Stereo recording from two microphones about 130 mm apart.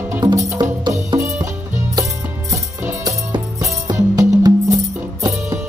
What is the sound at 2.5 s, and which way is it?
Music, 20° right (ahead or behind).